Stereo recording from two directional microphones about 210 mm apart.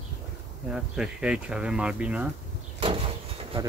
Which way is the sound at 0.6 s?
5° right (ahead or behind).